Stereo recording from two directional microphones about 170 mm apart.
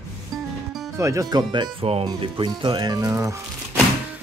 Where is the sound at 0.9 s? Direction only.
15° right (ahead or behind).